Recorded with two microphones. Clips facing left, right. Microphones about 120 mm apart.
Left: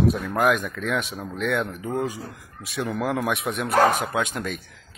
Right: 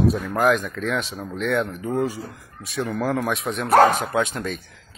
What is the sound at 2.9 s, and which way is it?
Speech, 15° left (ahead or behind).